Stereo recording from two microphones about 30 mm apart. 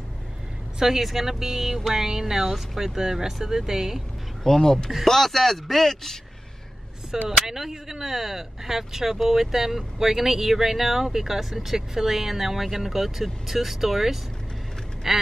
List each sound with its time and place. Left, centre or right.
0.7 s speech: centre
4.6 s speech: centre
7.1 s speech: centre